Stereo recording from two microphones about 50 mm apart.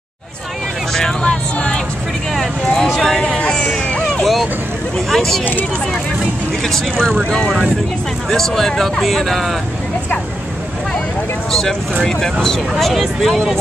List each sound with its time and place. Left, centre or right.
0.9 s speech: centre
2.3 s vehicle: centre
3.3 s hubbub: left
4.1 s vehicle: centre
5.1 s speech: centre
6.7 s speech: centre
12.0 s speech: centre